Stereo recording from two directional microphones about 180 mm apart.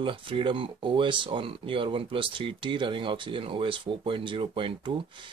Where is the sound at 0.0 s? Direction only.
30° right (ahead or behind).